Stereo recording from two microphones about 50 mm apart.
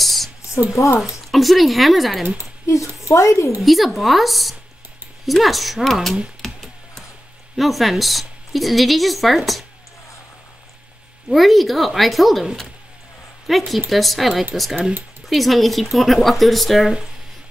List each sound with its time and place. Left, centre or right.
0.0 s a sound: centre
0.7 s speech: left
1.3 s speech: centre
2.6 s speech: left
3.6 s speech: centre
6.4 s music: centre
7.5 s speech: centre
11.2 s speech: centre
13.5 s speech: centre